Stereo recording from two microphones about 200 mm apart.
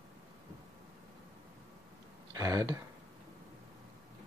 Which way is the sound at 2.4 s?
15° right (ahead or behind).